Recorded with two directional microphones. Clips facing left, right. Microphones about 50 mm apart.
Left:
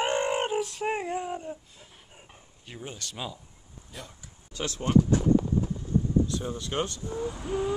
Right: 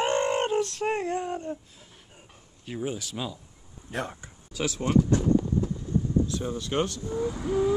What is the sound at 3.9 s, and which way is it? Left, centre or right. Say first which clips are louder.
Speech: right 12 dB; right.